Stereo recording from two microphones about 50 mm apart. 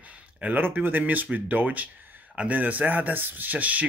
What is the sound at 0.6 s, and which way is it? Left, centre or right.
Speech, right.